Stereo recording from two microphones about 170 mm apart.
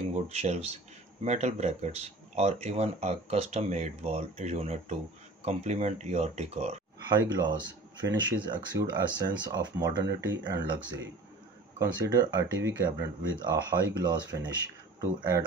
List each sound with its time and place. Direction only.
0.1 s speech: 40° right (ahead or behind)
7.1 s speech: 25° right (ahead or behind)